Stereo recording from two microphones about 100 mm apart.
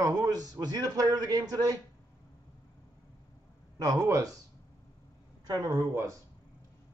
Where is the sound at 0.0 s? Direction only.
35° right (ahead or behind).